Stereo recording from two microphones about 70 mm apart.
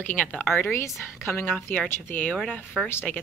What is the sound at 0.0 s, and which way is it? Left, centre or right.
Speech, left.